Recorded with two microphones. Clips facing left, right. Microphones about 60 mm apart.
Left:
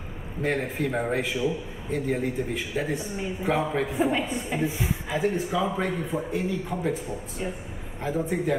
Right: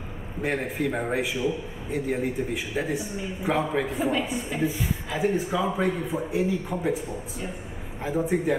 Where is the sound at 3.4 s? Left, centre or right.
Centre.